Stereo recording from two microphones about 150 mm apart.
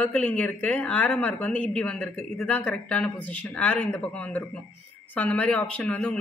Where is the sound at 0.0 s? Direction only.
10° left (ahead or behind).